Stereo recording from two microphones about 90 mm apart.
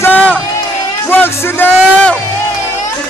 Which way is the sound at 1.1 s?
25° left (ahead or behind).